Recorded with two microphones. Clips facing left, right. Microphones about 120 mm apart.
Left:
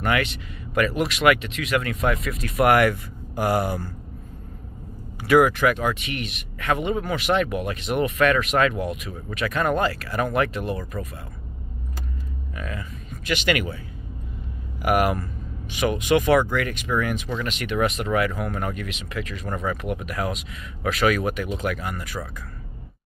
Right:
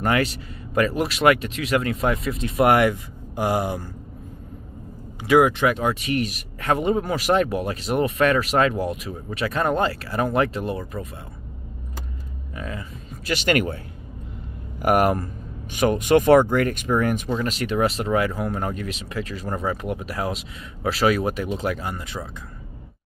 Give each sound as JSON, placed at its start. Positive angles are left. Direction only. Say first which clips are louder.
{"t": 0.0, "sound": "speech", "louder": "right 2 dB", "side_deg": -35}
{"t": 5.2, "sound": "speech", "louder": "even", "side_deg": -20}
{"t": 12.5, "sound": "speech", "louder": "right 2 dB", "side_deg": -30}
{"t": 14.8, "sound": "speech", "louder": "right 2 dB", "side_deg": -40}
{"t": 17.4, "sound": "speech", "louder": "left 1 dB", "side_deg": -35}